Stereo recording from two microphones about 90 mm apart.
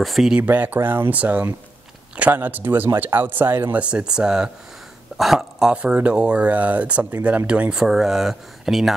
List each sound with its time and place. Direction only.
0.0 s speech: 5° right (ahead or behind)
0.4 s speech: 20° right (ahead or behind)
3.8 s speech: 10° right (ahead or behind)